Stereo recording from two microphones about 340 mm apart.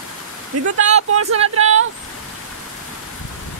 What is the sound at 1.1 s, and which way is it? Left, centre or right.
Speech, right.